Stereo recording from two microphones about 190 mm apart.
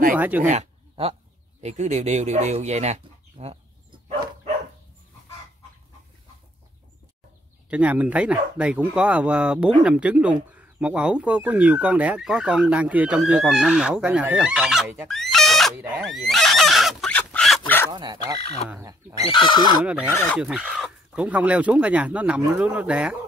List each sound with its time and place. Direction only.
0.1 s speech: 10° right (ahead or behind)
0.5 s a sound: 35° right (ahead or behind)
1.6 s speech: 35° right (ahead or behind)
7.7 s speech: 5° right (ahead or behind)
15.0 s a sound: centre (ahead or behind)
17.9 s speech: 20° right (ahead or behind)
19.2 s speech: 25° left (ahead or behind)
19.8 s speech: 5° right (ahead or behind)
20.1 s speech: 15° left (ahead or behind)
20.3 s speech: 5° right (ahead or behind)